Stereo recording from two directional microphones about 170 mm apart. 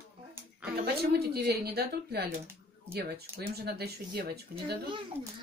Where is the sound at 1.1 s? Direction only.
70° right (ahead or behind).